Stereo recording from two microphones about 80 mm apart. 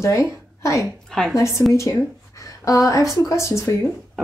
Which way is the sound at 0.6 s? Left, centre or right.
Left.